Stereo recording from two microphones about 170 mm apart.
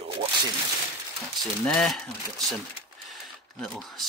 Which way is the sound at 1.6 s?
5° left (ahead or behind).